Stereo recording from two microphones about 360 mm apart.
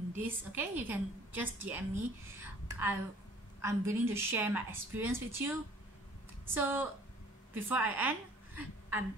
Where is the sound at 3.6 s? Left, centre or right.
Centre.